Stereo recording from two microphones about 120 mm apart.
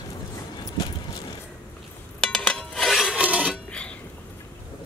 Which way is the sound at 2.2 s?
5° left (ahead or behind).